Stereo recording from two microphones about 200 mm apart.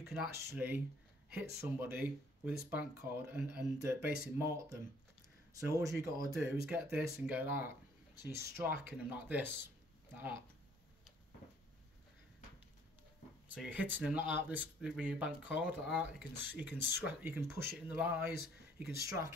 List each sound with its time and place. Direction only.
0.1 s speech: 10° right (ahead or behind)
6.5 s speech: 5° right (ahead or behind)
13.5 s speech: 5° right (ahead or behind)